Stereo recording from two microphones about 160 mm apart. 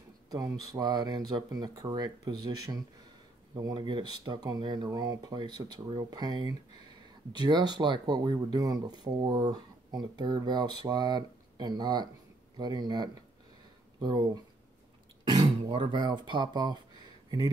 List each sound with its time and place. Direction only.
0.3 s speech: 20° right (ahead or behind)